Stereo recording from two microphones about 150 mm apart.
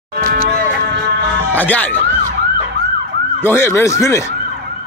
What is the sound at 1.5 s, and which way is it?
Speech, 10° left (ahead or behind).